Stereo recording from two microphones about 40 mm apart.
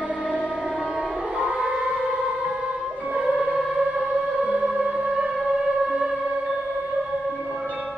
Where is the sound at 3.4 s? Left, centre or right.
Centre.